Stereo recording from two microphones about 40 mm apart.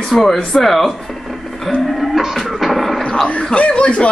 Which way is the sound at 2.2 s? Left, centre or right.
Centre.